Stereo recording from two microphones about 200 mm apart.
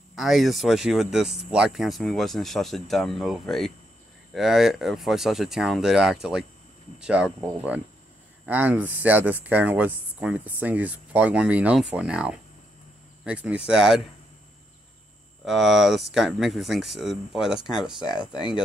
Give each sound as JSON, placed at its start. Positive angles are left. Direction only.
{"t": 0.1, "sound": "speech", "side_deg": 0}
{"t": 15.4, "sound": "speech", "side_deg": 0}